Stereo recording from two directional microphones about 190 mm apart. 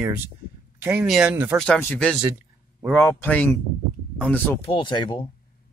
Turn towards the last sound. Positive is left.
turn(degrees=25)  # may be behind; listen again after turning